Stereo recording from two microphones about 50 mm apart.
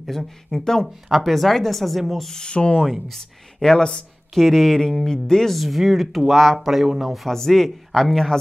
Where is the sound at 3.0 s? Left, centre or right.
Centre.